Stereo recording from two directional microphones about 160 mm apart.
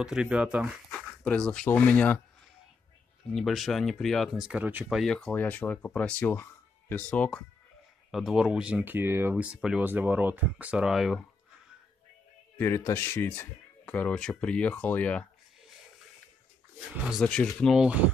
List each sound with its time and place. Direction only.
0.0 s speech: 5° right (ahead or behind); by 2.2 s 10° left (ahead or behind)
3.3 s speech: centre (ahead or behind)
12.5 s speech: 15° left (ahead or behind)
17.0 s speech: centre (ahead or behind)